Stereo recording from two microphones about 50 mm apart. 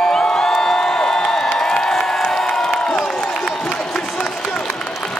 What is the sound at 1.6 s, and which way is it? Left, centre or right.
Crowd, centre.